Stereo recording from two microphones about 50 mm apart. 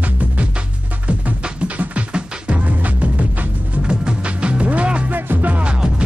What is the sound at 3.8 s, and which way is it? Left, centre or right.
Music, centre.